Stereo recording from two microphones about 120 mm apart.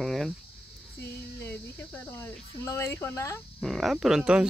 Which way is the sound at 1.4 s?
15° left (ahead or behind).